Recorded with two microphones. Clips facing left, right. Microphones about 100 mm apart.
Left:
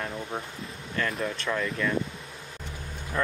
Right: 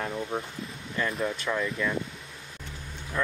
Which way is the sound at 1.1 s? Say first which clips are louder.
Right 1 dB; 5° right (ahead or behind).